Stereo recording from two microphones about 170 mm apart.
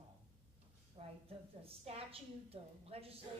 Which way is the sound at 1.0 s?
35° right (ahead or behind).